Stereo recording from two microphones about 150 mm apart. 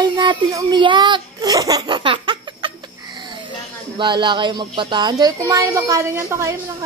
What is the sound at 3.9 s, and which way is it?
Speech, 30° right (ahead or behind).